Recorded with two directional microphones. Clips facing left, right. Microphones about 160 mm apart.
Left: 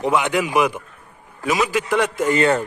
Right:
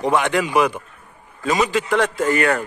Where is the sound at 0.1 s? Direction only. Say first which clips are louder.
Right 1 dB; 15° left (ahead or behind).